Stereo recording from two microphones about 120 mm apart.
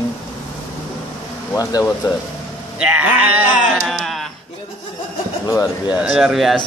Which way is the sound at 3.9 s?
Centre (ahead or behind).